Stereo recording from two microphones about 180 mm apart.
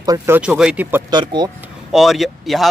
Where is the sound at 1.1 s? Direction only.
25° right (ahead or behind).